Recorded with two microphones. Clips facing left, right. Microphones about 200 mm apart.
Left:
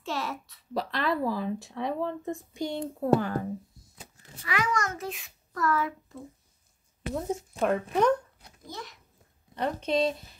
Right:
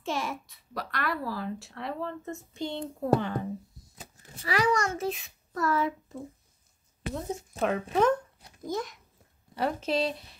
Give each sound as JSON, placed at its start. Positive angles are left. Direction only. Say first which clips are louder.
{"t": 0.0, "sound": "a sound", "louder": "right 1 dB", "side_deg": -15}
{"t": 0.7, "sound": "speech", "louder": "left 4 dB", "side_deg": 25}
{"t": 4.4, "sound": "a child's voice", "louder": "right 3 dB", "side_deg": -35}
{"t": 7.5, "sound": "speech", "louder": "even", "side_deg": 0}
{"t": 8.6, "sound": "a child's voice", "louder": "right 9 dB", "side_deg": -50}
{"t": 9.6, "sound": "speech", "louder": "left 1 dB", "side_deg": -5}